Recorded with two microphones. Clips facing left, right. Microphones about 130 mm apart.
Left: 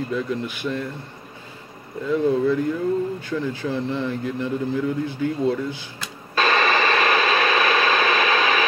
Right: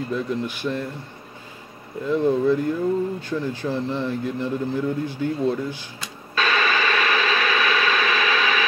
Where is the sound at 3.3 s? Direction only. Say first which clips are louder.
Left 1 dB; 15° right (ahead or behind).